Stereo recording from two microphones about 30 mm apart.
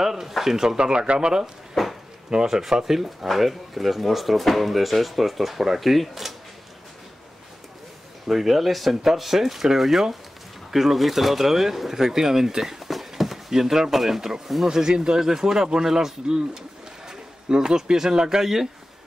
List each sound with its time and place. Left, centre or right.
0.0 s speech: centre
0.7 s speech: right
1.8 s a sound: centre
2.3 s speech: centre
3.3 s speech: centre
8.3 s speech: centre